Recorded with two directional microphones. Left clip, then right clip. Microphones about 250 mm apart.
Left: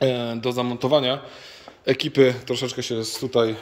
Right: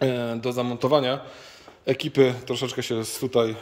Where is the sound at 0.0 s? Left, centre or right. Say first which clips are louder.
Left 2 dB; centre.